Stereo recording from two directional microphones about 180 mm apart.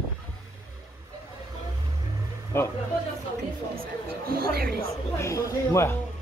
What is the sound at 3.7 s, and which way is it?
Speech, 55° right (ahead or behind).